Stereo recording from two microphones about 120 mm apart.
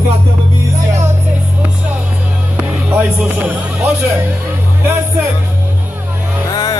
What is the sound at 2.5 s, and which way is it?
Music, 15° right (ahead or behind).